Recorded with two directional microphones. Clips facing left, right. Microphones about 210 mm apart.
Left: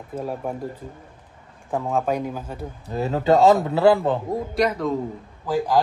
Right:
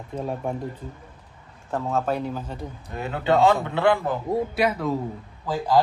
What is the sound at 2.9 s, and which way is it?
A man's voice, 35° left (ahead or behind).